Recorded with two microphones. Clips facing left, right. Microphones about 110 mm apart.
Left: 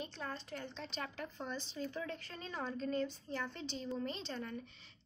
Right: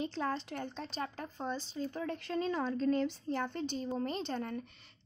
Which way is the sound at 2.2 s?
90° right.